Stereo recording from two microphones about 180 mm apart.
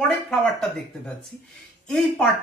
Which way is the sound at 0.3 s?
5° left (ahead or behind).